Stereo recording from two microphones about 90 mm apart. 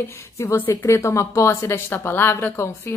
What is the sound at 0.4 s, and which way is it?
A woman's voice, 30° left (ahead or behind).